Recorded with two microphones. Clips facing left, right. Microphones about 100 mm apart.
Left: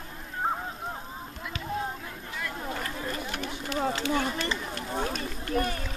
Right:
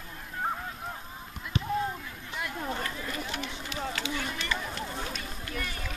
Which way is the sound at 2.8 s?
40° left (ahead or behind).